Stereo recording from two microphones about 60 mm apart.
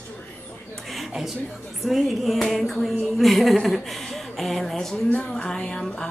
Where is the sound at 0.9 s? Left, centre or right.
Centre.